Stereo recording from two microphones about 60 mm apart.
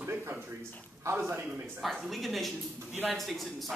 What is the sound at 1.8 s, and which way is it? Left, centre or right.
Speech, centre.